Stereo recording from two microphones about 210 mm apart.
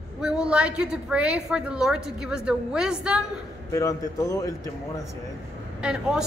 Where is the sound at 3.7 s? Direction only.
15° left (ahead or behind).